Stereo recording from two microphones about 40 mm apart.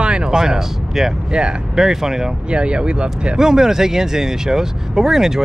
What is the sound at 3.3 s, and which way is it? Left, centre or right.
Speech, centre.